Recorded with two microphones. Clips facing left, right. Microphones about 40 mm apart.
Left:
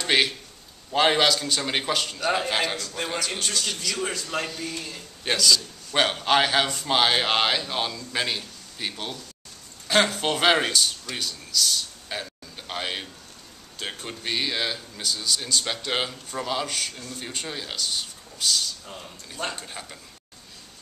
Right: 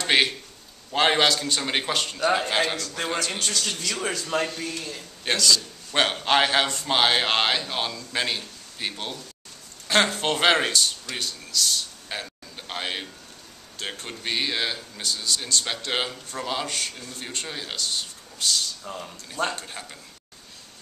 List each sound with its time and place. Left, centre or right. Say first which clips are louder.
0.0 s a man's voice: right 1 dB; centre
3.3 s a man's voice: even; centre
4.2 s a man's voice: right 3 dB; centre